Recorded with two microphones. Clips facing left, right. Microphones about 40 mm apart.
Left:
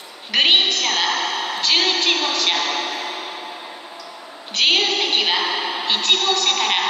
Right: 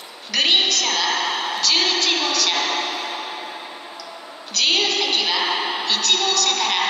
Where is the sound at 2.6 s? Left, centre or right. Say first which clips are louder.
Even; centre.